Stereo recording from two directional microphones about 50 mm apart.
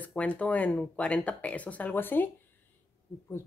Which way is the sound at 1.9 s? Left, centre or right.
Left.